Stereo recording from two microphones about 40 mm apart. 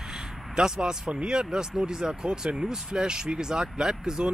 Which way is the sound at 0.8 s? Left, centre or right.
Centre.